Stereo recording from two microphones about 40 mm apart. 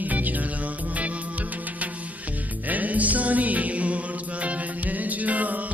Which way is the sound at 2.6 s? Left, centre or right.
Right.